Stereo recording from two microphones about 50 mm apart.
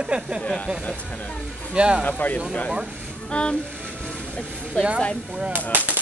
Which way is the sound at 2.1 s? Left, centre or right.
Left.